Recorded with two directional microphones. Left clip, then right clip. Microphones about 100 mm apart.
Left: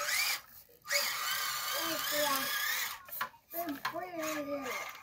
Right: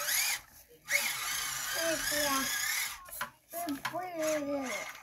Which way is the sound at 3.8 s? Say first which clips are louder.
Right 6 dB; 55° left (ahead or behind).